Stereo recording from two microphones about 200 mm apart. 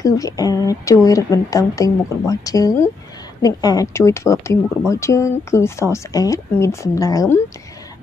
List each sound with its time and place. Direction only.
0.0 s speech: 15° left (ahead or behind)